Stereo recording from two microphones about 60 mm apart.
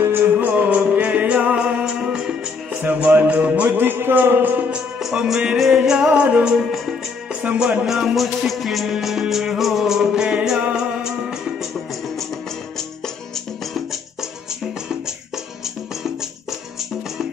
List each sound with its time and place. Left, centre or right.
0.0 s music: right
0.5 s music: right
2.8 s music: right
5.0 s music: centre
6.6 s music: centre
7.4 s music: centre
7.8 s music: centre
14.9 s music: centre